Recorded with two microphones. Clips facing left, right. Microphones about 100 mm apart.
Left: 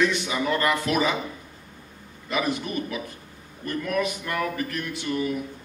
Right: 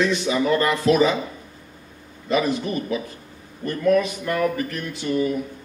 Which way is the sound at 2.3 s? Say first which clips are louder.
Right 5 dB; 25° right (ahead or behind).